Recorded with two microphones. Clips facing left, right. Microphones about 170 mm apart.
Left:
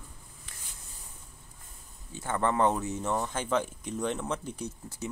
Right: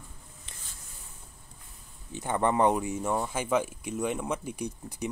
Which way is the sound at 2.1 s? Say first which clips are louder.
Right 2 dB; 15° right (ahead or behind).